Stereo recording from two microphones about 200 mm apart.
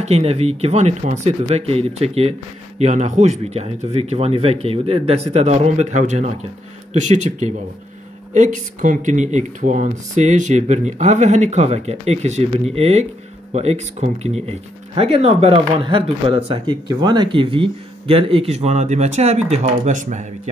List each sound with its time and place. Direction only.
0.0 s speech: 30° right (ahead or behind)